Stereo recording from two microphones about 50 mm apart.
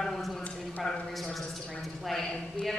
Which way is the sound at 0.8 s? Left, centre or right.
Centre.